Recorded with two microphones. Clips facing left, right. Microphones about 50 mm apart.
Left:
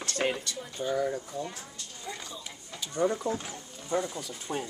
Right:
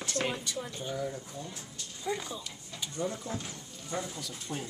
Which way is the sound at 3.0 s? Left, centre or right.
Left.